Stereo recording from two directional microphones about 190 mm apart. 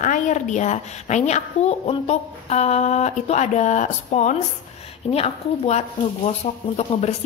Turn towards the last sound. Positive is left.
turn(degrees=35)  # may be behind; listen again after turning